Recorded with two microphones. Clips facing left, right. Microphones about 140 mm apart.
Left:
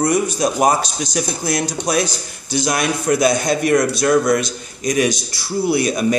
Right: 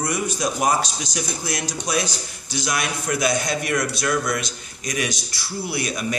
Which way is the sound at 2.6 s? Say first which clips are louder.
Left 7 dB; 45° left (ahead or behind).